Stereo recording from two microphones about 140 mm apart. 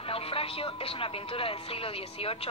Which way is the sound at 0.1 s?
40° left (ahead or behind).